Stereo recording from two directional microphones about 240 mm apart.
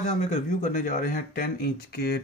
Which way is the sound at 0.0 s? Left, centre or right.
Left.